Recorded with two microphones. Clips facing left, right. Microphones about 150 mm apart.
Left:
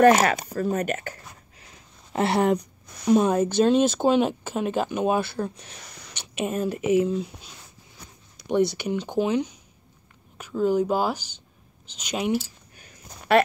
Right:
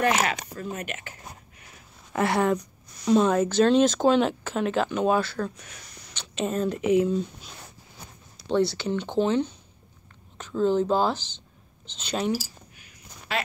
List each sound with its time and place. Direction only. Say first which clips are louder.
0.0 s speech: left 7 dB; 45° left (ahead or behind)
1.6 s a sound: even; 25° left (ahead or behind)
3.1 s speech: left 1 dB; 15° left (ahead or behind)
8.5 s speech: left 1 dB; 20° left (ahead or behind)
13.3 s speech: left 11 dB; 60° left (ahead or behind)